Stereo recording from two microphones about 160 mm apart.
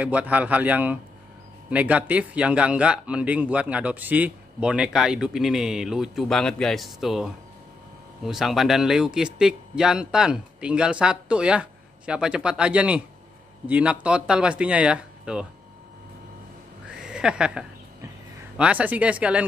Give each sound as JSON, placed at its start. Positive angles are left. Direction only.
{"t": 0.0, "sound": "a man's voice", "side_deg": -10}
{"t": 16.9, "sound": "a sound", "side_deg": -5}
{"t": 18.6, "sound": "a man's voice", "side_deg": -10}